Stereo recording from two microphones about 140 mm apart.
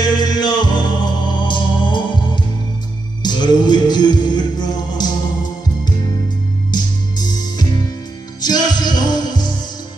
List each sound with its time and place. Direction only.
0.0 s music: 30° left (ahead or behind)
6.7 s music: 30° left (ahead or behind)